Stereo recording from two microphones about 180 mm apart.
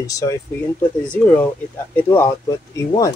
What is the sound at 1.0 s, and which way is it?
Speech, 10° left (ahead or behind).